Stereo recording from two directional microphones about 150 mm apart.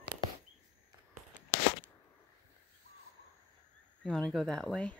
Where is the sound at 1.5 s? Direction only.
85° left.